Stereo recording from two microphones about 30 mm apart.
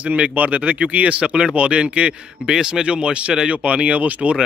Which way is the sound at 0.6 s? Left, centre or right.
Right.